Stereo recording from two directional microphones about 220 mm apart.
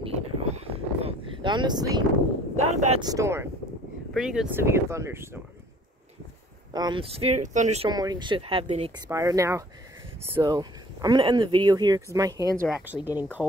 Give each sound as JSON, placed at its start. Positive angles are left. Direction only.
{"t": 0.0, "sound": "a sound", "side_deg": -25}
{"t": 2.5, "sound": "speech", "side_deg": -30}
{"t": 3.0, "sound": "speech", "side_deg": -15}
{"t": 4.1, "sound": "speech", "side_deg": 0}
{"t": 6.7, "sound": "speech", "side_deg": -20}
{"t": 7.9, "sound": "speech", "side_deg": -20}
{"t": 12.6, "sound": "speech", "side_deg": -5}